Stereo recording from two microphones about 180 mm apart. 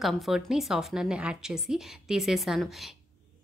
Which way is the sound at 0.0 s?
Centre (ahead or behind).